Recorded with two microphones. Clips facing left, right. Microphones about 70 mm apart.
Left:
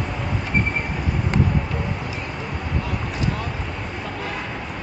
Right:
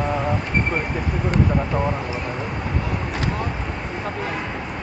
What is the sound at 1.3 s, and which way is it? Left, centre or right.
Speech, right.